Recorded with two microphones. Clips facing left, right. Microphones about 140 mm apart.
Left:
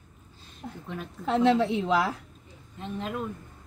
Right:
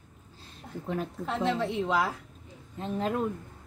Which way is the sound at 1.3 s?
85° left.